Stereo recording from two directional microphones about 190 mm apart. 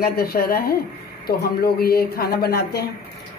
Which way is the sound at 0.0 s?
55° left (ahead or behind).